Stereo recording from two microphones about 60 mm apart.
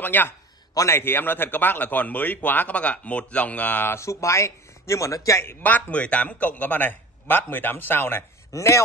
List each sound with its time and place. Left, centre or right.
0.0 s a man's voice: left
3.9 s speech: left
5.6 s speech: left
8.5 s speech: left